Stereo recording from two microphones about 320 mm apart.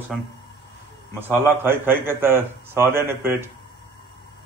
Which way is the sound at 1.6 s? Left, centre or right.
Centre.